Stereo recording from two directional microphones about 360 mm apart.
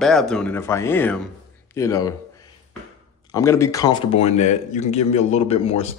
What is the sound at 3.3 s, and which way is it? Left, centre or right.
Speech, centre.